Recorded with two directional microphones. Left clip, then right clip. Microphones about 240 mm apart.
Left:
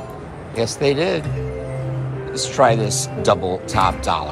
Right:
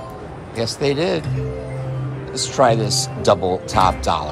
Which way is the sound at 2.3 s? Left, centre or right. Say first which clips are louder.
Even; centre.